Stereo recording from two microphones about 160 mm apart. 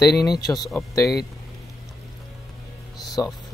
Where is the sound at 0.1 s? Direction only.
Centre (ahead or behind).